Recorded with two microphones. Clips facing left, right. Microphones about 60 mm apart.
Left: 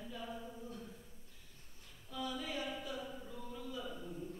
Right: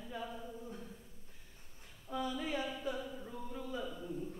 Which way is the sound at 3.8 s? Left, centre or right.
Centre.